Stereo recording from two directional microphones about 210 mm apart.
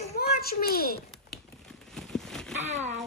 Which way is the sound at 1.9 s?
Centre (ahead or behind).